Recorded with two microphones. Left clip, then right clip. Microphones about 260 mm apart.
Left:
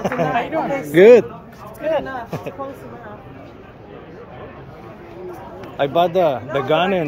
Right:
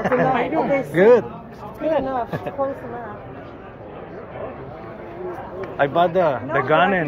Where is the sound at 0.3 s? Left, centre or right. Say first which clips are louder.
Right 1 dB; left.